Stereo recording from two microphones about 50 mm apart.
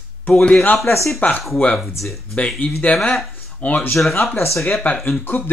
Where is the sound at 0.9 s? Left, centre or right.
Left.